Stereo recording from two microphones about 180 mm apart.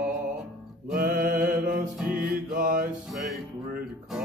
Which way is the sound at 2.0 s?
10° right (ahead or behind).